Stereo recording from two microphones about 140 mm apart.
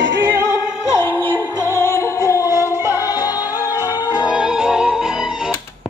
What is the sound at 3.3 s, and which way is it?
Music, 30° left (ahead or behind).